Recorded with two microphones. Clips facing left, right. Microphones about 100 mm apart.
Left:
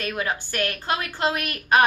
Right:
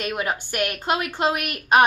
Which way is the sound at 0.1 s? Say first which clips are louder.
Right 1 dB; 15° right (ahead or behind).